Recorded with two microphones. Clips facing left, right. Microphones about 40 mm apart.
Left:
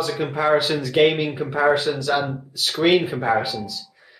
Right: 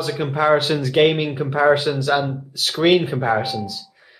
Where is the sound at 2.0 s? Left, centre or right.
Right.